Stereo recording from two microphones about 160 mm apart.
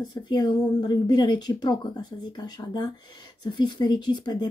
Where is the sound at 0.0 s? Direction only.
25° left (ahead or behind).